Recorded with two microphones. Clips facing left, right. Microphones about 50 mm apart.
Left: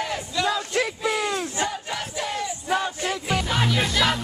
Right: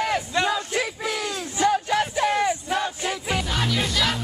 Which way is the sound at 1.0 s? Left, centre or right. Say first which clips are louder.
Left 3 dB; left.